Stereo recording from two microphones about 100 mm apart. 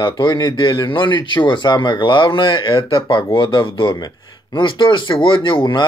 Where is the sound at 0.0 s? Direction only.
50° left (ahead or behind).